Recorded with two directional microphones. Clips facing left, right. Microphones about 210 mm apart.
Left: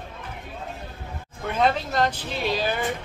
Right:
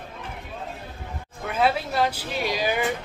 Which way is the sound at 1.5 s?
5° right (ahead or behind).